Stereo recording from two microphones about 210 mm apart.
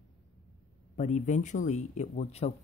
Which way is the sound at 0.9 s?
35° left (ahead or behind).